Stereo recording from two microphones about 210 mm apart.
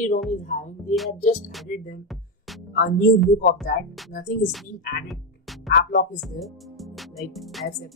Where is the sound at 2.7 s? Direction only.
45° left (ahead or behind).